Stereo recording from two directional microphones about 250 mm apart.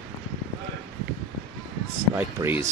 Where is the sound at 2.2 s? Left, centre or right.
Centre.